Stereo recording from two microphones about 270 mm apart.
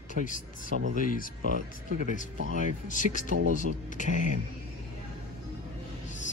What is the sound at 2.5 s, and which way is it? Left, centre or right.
A man's voice, left.